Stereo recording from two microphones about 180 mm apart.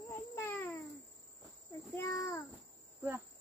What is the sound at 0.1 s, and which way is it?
Babbling, 15° left (ahead or behind).